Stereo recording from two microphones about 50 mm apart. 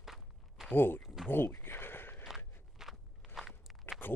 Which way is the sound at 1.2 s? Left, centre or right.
Left.